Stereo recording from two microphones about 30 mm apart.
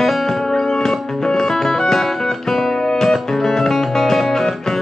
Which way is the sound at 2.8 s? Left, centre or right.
Centre.